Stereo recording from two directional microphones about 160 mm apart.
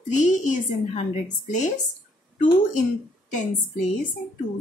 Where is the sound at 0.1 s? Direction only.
50° left (ahead or behind).